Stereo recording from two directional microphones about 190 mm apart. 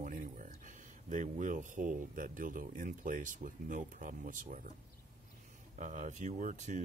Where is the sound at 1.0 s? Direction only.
40° right (ahead or behind).